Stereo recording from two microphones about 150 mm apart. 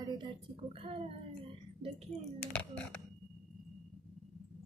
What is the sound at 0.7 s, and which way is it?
Speech, 40° right (ahead or behind).